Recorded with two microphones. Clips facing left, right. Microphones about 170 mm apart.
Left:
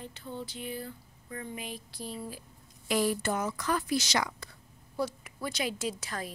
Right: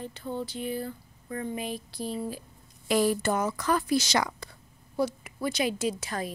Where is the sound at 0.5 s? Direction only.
40° right (ahead or behind).